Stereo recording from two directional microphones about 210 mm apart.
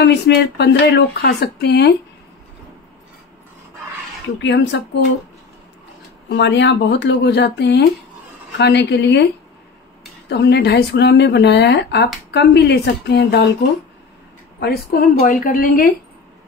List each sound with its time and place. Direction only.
0.0 s speech: 55° left (ahead or behind)
4.4 s speech: 55° left (ahead or behind)
6.2 s speech: 55° left (ahead or behind)
10.3 s speech: 55° left (ahead or behind)
14.6 s speech: 45° left (ahead or behind)